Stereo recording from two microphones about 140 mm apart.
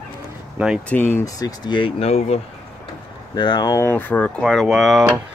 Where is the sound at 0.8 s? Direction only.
15° left (ahead or behind); by 2.4 s 50° left (ahead or behind).